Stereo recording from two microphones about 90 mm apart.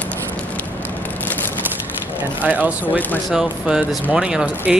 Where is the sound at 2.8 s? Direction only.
20° left (ahead or behind).